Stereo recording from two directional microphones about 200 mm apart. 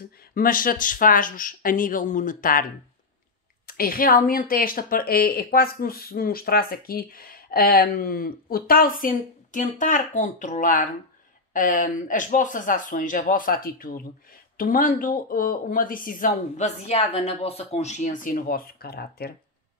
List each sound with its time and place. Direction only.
0.3 s a woman's voice: 45° left (ahead or behind)
3.6 s a woman's voice: 45° left (ahead or behind)